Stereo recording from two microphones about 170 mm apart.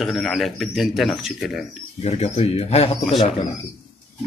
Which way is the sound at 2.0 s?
40° left (ahead or behind).